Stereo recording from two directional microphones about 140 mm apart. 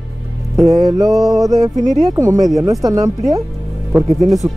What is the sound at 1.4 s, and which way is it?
Speech, 25° right (ahead or behind).